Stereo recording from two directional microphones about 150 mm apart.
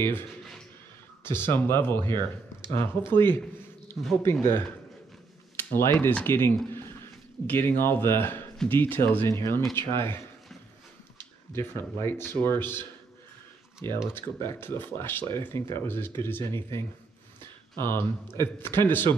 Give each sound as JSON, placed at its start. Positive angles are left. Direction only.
{"t": 1.2, "sound": "speech", "side_deg": 15}
{"t": 5.8, "sound": "speech", "side_deg": 15}
{"t": 11.1, "sound": "speech", "side_deg": 15}
{"t": 17.4, "sound": "a sound", "side_deg": 15}
{"t": 18.4, "sound": "speech", "side_deg": 15}